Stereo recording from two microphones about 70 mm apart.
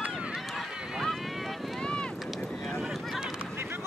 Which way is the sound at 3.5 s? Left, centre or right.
Right.